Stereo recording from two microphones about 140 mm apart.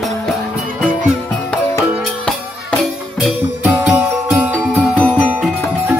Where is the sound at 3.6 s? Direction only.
10° right (ahead or behind).